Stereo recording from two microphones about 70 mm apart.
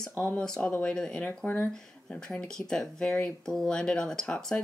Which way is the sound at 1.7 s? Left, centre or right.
Centre.